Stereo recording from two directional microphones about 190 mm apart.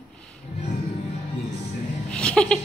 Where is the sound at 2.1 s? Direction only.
5° left (ahead or behind).